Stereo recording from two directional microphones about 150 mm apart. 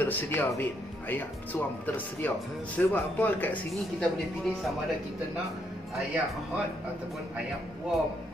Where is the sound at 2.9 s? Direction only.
10° left (ahead or behind).